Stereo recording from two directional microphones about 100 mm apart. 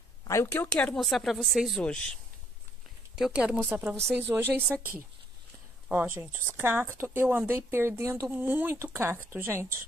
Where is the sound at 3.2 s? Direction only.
5° right (ahead or behind).